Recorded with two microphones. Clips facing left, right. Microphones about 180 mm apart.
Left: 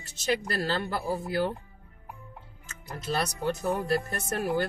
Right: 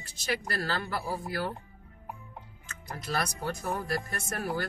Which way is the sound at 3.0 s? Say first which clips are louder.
Left 4 dB; 25° left (ahead or behind).